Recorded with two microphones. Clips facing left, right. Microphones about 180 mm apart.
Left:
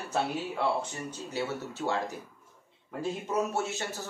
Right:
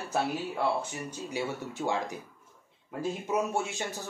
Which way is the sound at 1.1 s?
15° right (ahead or behind).